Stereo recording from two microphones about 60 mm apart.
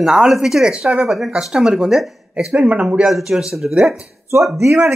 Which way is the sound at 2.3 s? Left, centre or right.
Centre.